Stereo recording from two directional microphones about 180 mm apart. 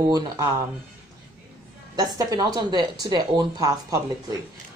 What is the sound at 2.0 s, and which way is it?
Speech, 20° right (ahead or behind).